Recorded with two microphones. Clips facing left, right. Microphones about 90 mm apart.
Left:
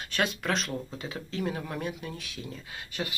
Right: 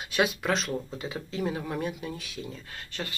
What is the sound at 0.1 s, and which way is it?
Speech, 5° right (ahead or behind).